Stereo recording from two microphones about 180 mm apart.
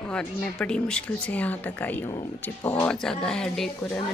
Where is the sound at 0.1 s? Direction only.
5° left (ahead or behind).